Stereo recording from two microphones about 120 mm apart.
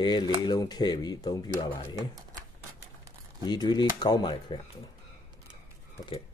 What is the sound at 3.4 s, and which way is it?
Speech, 35° left (ahead or behind).